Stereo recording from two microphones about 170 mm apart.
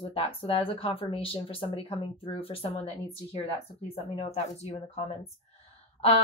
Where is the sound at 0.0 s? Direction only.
35° left (ahead or behind).